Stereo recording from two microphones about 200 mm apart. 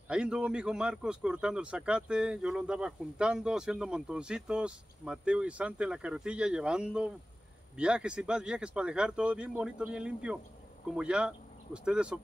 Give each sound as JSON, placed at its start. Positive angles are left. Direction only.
{"t": 0.1, "sound": "speech", "side_deg": -5}